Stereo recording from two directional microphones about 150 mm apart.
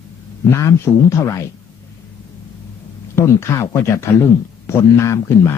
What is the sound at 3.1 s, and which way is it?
A man's voice, 20° left (ahead or behind).